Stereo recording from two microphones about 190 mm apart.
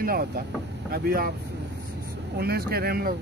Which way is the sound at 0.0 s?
50° right (ahead or behind).